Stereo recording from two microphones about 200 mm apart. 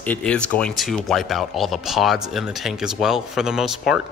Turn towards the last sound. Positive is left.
turn(degrees=0)  # may be behind; listen again after turning